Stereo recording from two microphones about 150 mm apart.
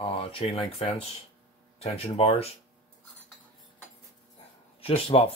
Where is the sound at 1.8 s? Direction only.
45° left (ahead or behind).